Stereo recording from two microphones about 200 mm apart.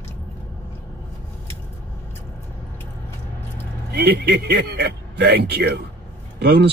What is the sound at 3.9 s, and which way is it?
Speech, 55° right (ahead or behind).